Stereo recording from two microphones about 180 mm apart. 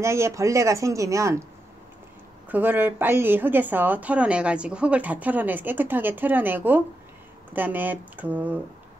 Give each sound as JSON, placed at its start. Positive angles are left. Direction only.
{"t": 0.0, "sound": "speech", "side_deg": -15}
{"t": 2.5, "sound": "speech", "side_deg": -10}